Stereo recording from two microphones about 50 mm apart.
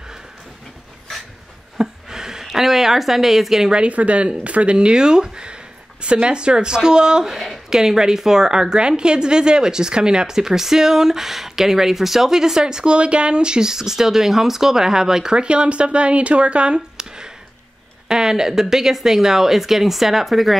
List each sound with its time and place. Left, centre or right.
1.8 s speech: centre
3.8 s speech: right; by 20.5 s centre